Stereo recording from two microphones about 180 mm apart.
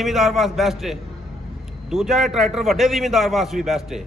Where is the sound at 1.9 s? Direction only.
Centre (ahead or behind).